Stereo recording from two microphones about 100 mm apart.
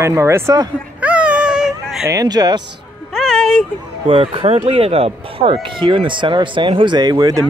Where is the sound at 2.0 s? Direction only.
40° right (ahead or behind).